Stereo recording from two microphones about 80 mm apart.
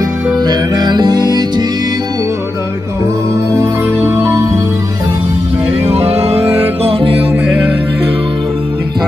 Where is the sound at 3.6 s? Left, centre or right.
Right.